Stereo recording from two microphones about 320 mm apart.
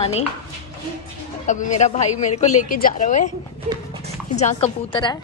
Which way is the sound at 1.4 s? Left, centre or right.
Left.